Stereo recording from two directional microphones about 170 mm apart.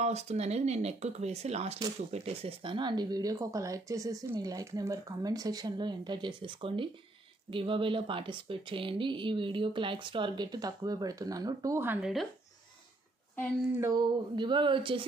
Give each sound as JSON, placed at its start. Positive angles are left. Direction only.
{"t": 0.0, "sound": "speech", "side_deg": -40}
{"t": 13.7, "sound": "speech", "side_deg": -20}